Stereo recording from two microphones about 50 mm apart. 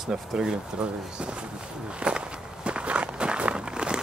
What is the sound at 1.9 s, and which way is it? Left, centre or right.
Walk, right.